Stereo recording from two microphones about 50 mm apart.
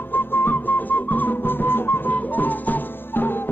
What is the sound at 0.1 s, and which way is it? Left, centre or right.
Music, left.